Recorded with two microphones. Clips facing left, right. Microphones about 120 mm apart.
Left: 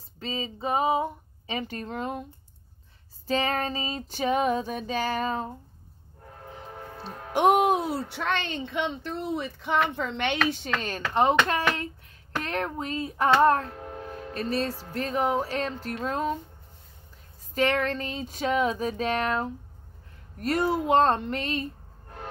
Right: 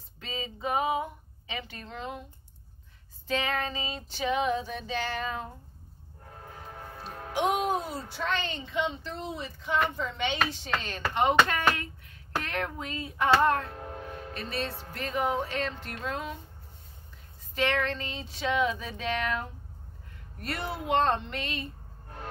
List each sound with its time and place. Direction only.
0.2 s female singing: 30° left (ahead or behind)
1.6 s female singing: 45° left (ahead or behind)
3.3 s female singing: 35° left (ahead or behind)
7.3 s speech: 60° left (ahead or behind)
11.1 s speech: 35° left (ahead or behind)
17.6 s female singing: 45° left (ahead or behind)
20.3 s speech: 40° left (ahead or behind)